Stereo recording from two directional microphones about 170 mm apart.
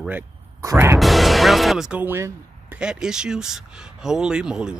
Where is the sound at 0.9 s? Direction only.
Centre (ahead or behind).